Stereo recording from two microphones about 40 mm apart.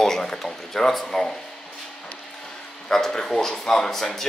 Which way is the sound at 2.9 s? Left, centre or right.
Centre.